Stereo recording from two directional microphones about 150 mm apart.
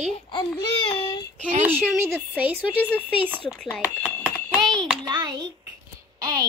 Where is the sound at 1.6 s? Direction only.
15° right (ahead or behind).